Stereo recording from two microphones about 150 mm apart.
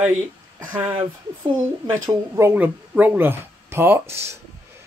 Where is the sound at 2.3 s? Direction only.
15° right (ahead or behind).